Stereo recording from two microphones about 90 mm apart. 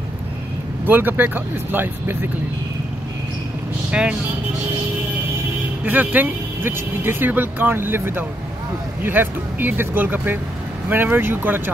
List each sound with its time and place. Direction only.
0.8 s speech: 20° right (ahead or behind)
3.9 s speech: 10° right (ahead or behind)
5.9 s speech: 20° right (ahead or behind)